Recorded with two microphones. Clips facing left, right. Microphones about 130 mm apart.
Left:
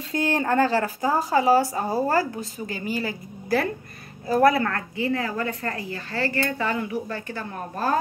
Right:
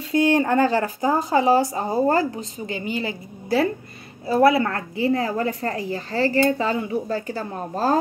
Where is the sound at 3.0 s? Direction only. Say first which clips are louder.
Right 1 dB; 25° right (ahead or behind).